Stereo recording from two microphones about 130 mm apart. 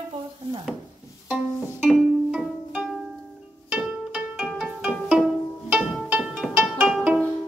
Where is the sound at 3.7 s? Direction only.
5° right (ahead or behind).